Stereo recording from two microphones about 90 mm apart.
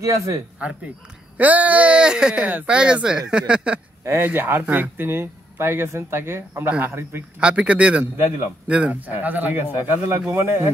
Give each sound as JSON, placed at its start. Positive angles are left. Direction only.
{"t": 0.0, "sound": "speech", "side_deg": -35}
{"t": 1.4, "sound": "speech", "side_deg": -15}
{"t": 4.0, "sound": "speech", "side_deg": -25}
{"t": 7.3, "sound": "speech", "side_deg": -10}